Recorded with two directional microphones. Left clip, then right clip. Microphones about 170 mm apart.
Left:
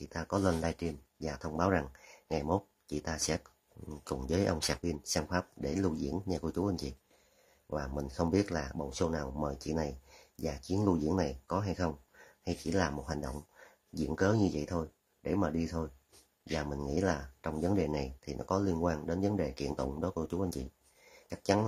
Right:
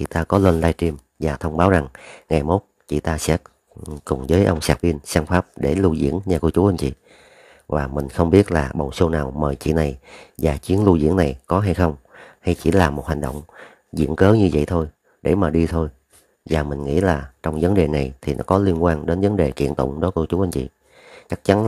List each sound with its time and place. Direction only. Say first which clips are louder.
0.0 s speech: right 15 dB; 50° right (ahead or behind)